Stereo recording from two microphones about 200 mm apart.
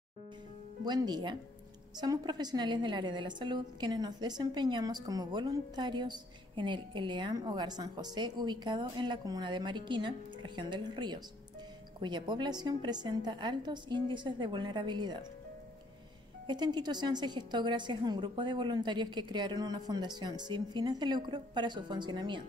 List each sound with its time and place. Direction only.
0.8 s a woman's voice: 20° right (ahead or behind)
16.4 s a woman's voice: 20° right (ahead or behind)